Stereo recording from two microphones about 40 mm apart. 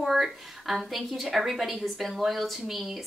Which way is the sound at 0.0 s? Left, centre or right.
Centre.